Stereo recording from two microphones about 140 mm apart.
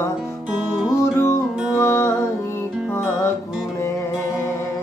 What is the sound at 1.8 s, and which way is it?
Music, 15° left (ahead or behind).